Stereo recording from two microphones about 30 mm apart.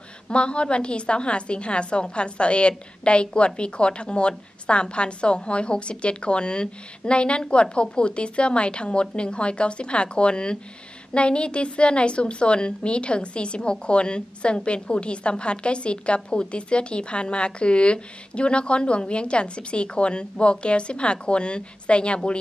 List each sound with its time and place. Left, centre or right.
0.3 s a woman's voice: left